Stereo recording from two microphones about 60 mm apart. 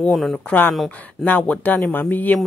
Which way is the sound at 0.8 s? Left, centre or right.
Left.